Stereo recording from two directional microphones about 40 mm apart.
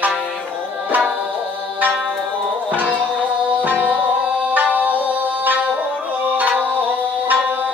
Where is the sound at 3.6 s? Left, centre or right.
Right.